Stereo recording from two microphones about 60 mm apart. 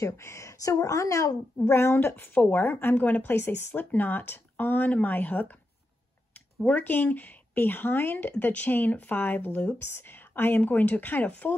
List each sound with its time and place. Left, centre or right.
0.0 s a woman's voice: left
1.7 s speech: left
6.6 s speech: left